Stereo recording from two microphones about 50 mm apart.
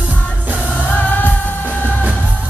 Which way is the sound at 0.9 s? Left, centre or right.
Left.